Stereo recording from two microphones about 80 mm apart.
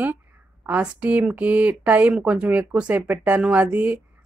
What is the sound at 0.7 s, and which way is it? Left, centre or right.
A woman's voice, centre.